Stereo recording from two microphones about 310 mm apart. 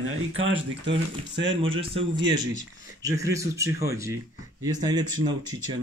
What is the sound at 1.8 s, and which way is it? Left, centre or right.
Speech, centre.